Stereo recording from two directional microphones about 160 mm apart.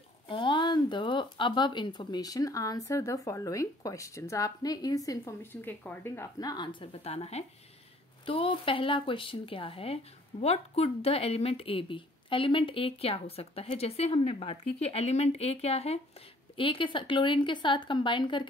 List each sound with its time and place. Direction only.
0.3 s speech: 30° left (ahead or behind)